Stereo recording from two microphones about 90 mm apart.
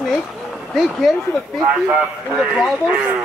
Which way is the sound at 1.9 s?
20° right (ahead or behind).